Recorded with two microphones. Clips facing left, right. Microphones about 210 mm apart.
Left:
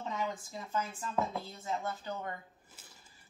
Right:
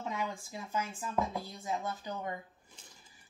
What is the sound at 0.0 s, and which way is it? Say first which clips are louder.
A woman's voice: even; 10° right (ahead or behind).